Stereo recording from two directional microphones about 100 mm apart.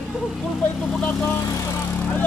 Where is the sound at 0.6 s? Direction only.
15° left (ahead or behind).